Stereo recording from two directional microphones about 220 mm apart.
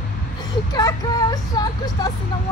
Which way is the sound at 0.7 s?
15° left (ahead or behind).